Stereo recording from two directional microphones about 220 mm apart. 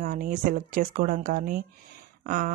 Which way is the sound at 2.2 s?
40° right (ahead or behind).